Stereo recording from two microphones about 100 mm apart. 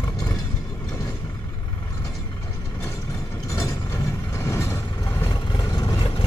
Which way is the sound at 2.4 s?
30° left (ahead or behind).